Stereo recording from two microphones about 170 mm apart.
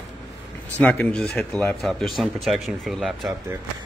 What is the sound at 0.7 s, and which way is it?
Speech, 10° left (ahead or behind).